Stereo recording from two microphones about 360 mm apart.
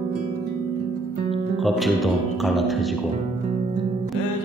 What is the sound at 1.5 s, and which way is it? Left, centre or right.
Speech, centre.